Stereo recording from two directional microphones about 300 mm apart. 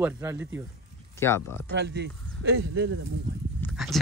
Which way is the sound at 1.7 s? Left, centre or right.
Right.